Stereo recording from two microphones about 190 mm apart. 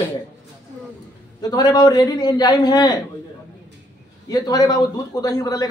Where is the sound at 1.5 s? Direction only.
20° left (ahead or behind).